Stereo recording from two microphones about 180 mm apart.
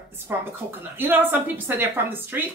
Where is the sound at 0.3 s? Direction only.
10° right (ahead or behind).